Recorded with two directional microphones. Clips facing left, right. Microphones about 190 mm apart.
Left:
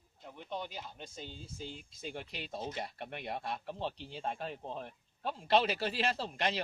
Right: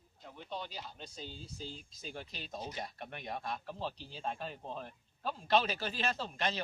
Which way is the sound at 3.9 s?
70° left (ahead or behind).